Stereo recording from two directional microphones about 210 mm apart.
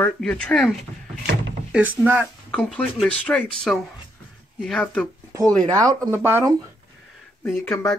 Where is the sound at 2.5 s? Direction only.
5° left (ahead or behind).